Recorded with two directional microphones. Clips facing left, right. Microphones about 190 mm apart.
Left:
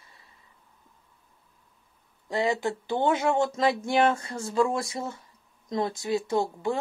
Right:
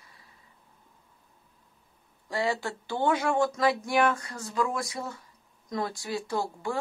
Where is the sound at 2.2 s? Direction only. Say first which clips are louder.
Left 3 dB; 20° left (ahead or behind).